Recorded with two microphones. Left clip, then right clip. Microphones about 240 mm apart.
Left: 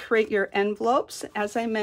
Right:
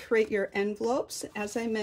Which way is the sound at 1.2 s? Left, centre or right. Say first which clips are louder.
Left 6 dB; centre.